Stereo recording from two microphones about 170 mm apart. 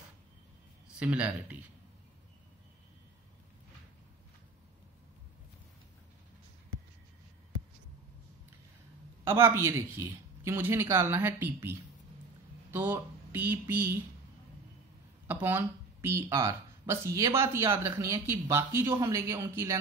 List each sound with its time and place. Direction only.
0.8 s a man's voice: 5° right (ahead or behind)
9.2 s a man's voice: 15° right (ahead or behind)
15.2 s a man's voice: 15° right (ahead or behind)